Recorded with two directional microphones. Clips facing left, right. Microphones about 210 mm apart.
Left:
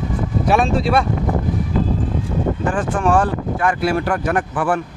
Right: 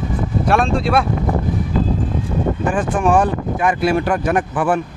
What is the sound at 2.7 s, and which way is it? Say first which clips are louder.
Speech: right 2 dB; 15° right (ahead or behind).